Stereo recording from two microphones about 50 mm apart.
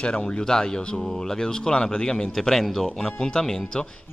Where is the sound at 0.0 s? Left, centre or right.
Centre.